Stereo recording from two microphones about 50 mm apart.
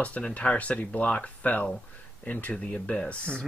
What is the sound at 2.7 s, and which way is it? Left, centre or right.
Speech, centre.